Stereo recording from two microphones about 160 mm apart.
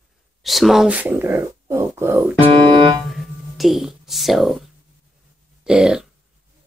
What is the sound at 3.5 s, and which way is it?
A woman's voice, centre (ahead or behind).